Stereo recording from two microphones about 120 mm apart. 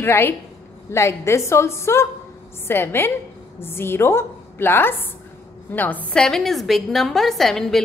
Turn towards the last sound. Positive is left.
turn(degrees=5)  # may be behind; listen again after turning